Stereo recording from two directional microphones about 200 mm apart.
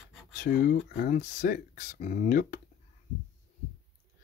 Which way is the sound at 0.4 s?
45° left (ahead or behind).